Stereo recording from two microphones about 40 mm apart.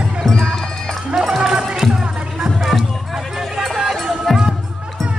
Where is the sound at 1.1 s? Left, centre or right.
Centre.